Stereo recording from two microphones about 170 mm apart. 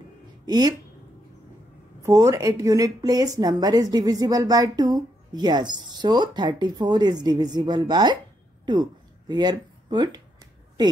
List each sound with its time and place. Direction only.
0.5 s speech: 25° right (ahead or behind)
2.0 s speech: 20° right (ahead or behind)